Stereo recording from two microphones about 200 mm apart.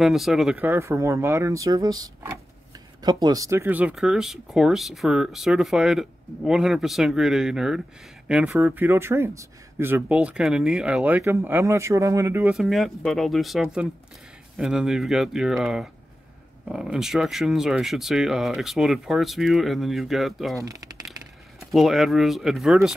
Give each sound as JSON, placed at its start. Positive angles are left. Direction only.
{"t": 0.0, "sound": "speech", "side_deg": 0}
{"t": 21.7, "sound": "speech", "side_deg": 0}